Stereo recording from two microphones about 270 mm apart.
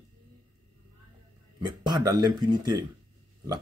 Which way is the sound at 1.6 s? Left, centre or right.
Centre.